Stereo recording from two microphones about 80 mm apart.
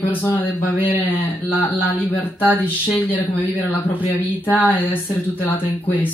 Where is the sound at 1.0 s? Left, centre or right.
Left.